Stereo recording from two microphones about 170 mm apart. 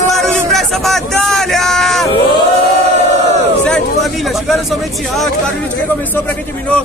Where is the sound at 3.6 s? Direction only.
Centre (ahead or behind).